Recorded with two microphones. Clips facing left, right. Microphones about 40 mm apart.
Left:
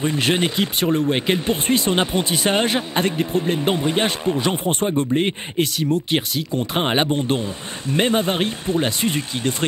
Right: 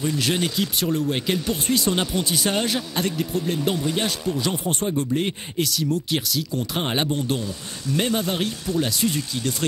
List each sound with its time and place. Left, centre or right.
0.0 s speech: left